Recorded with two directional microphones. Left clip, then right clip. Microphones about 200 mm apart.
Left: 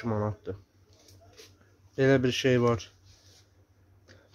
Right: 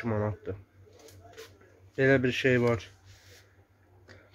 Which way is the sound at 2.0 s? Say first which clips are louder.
Even; 15° left (ahead or behind).